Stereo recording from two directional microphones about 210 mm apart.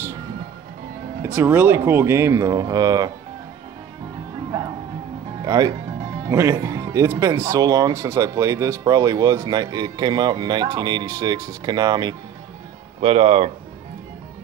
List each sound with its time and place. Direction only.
1.2 s speech: 10° right (ahead or behind)
5.4 s speech: 15° right (ahead or behind)